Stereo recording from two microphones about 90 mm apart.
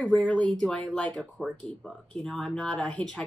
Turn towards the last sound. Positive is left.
turn(degrees=10)  # may be behind; listen again after turning